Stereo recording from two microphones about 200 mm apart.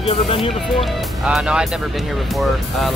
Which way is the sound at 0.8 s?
5° right (ahead or behind).